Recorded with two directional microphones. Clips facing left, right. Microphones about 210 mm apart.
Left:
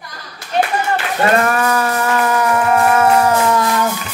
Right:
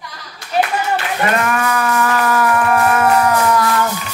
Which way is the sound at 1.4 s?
35° left (ahead or behind).